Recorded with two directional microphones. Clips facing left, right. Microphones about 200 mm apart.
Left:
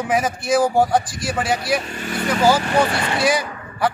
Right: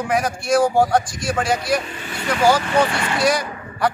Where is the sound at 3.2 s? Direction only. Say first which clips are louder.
Right 3 dB; 5° left (ahead or behind).